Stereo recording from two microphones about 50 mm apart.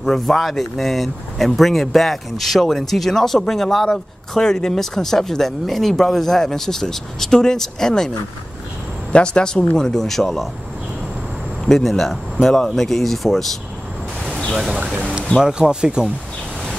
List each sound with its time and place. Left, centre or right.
0.0 s speech: centre
9.1 s speech: left
11.6 s speech: centre
14.5 s speech: centre
15.4 s speech: centre